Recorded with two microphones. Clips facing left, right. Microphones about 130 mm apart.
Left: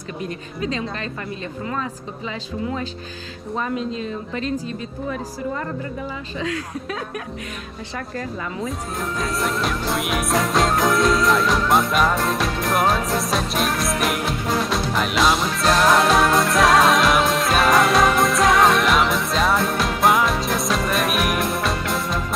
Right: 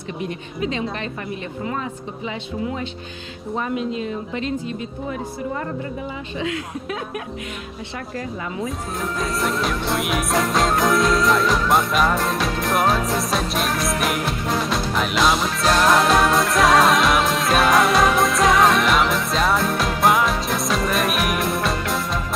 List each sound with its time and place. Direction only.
3.7 s a woman's voice: 20° right (ahead or behind)
8.6 s music: centre (ahead or behind)